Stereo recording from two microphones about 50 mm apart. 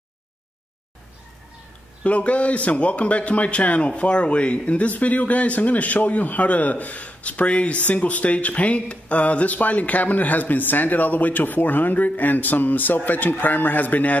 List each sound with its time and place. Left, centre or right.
2.0 s speech: left